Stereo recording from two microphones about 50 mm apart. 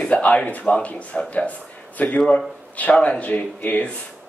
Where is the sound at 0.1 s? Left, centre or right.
Left.